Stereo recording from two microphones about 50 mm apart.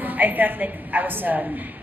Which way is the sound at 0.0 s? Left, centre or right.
Right.